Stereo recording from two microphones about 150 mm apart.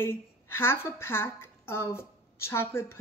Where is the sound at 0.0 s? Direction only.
15° left (ahead or behind).